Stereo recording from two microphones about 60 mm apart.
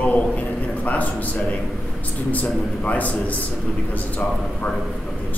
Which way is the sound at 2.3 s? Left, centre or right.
Left.